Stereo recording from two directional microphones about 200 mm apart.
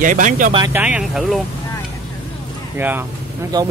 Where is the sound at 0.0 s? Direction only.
40° right (ahead or behind).